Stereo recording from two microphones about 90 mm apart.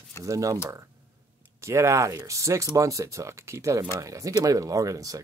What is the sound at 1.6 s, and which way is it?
Speech, 35° right (ahead or behind).